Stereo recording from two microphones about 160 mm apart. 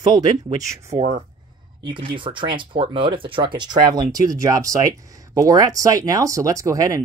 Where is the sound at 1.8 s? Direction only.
30° right (ahead or behind).